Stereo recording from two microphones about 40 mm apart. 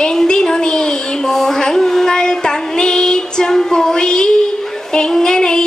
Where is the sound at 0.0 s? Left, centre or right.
Centre.